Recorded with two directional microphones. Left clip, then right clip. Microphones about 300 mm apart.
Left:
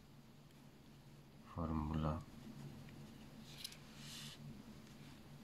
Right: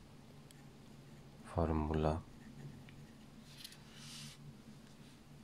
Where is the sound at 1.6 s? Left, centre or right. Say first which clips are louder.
Right 8 dB; right.